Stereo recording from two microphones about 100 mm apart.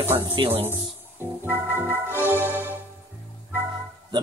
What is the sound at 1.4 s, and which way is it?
Music, 15° right (ahead or behind).